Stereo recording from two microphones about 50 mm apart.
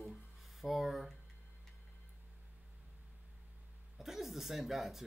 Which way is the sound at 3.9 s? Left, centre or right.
Centre.